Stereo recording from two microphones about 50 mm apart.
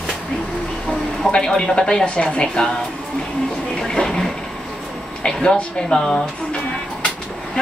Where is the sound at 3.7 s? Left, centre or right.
Centre.